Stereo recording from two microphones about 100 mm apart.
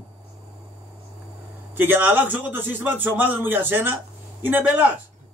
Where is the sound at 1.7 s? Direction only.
20° right (ahead or behind).